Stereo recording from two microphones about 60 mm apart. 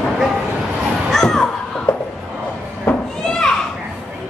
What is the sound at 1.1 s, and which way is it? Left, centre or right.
Children playing, centre.